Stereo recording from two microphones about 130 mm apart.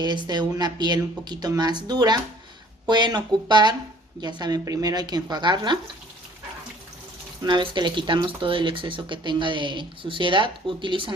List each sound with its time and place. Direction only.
0.0 s speech: 35° right (ahead or behind)
7.4 s speech: 35° right (ahead or behind)